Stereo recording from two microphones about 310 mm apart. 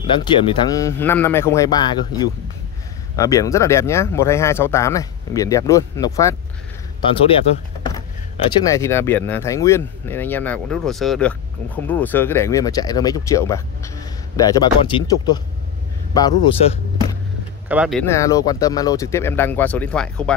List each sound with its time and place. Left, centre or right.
0.2 s speech: centre
17.6 s speech: centre